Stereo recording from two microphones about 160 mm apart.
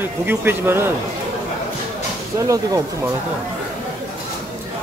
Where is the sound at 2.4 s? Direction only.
20° right (ahead or behind).